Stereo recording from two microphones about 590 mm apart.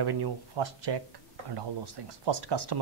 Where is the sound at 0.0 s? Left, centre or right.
Right.